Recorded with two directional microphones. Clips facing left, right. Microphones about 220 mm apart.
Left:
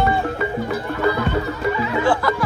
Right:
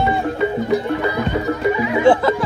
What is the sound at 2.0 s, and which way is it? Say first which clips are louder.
Music: right 6 dB; 25° right (ahead or behind).